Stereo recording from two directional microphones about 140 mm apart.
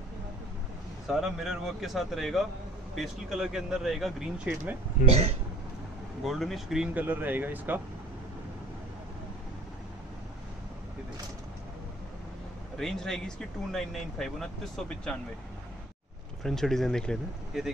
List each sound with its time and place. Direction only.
1.0 s speech: centre (ahead or behind)
5.0 s speech: 45° right (ahead or behind)
6.2 s speech: centre (ahead or behind)
12.7 s speech: 5° left (ahead or behind)
16.4 s speech: centre (ahead or behind)